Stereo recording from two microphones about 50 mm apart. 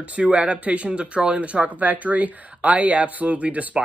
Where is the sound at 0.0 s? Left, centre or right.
Right.